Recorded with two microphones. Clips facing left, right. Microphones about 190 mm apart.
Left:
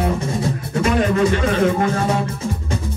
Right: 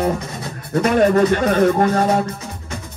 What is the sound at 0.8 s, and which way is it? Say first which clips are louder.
Speech: right 3 dB; 50° right (ahead or behind).